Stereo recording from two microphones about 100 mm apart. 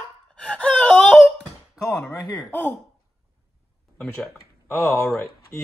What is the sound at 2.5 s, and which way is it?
Speech, 15° left (ahead or behind).